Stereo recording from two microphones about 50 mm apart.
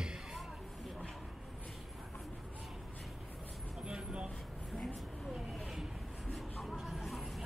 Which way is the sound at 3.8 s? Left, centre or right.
Centre.